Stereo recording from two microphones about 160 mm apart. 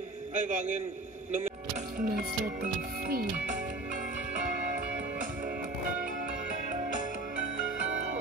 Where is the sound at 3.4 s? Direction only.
55° right (ahead or behind).